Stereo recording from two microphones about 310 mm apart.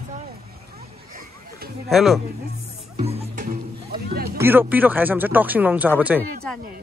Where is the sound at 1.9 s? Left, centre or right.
Centre.